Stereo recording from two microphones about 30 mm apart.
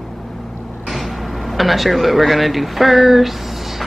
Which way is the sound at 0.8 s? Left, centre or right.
Centre.